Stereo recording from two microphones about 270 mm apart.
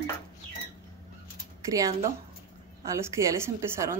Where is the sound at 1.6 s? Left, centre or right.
Centre.